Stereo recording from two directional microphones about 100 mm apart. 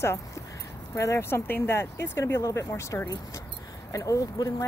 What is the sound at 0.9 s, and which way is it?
Speech, 30° left (ahead or behind).